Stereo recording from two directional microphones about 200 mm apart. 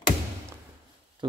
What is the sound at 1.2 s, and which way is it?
Pig, 25° right (ahead or behind).